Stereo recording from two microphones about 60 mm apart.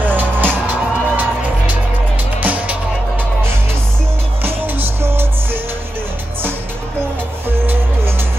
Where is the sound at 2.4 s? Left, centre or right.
Right.